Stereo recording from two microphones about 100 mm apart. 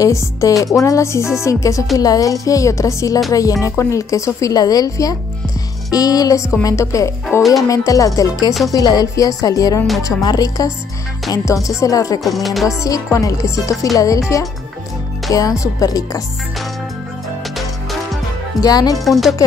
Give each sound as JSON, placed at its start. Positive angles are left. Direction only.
{"t": 0.0, "sound": "speech", "side_deg": 30}
{"t": 7.3, "sound": "music", "side_deg": 25}
{"t": 7.6, "sound": "speech", "side_deg": 35}
{"t": 12.2, "sound": "music", "side_deg": 0}
{"t": 12.6, "sound": "speech", "side_deg": 35}
{"t": 15.3, "sound": "speech", "side_deg": 35}
{"t": 18.6, "sound": "speech", "side_deg": 40}
{"t": 19.0, "sound": "music", "side_deg": 0}